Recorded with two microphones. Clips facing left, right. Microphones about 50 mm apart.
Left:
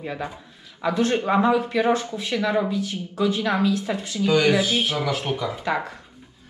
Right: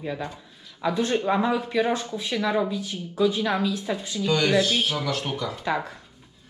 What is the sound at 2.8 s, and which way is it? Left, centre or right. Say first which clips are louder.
Speech: even; left.